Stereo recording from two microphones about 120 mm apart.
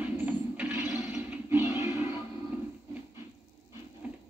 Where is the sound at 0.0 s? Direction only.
10° right (ahead or behind).